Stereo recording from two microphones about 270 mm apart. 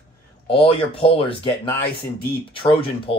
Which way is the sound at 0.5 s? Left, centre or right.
Centre.